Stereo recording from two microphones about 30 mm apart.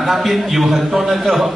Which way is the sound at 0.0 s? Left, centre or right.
Centre.